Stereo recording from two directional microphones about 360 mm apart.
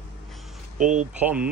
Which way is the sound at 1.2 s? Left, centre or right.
Centre.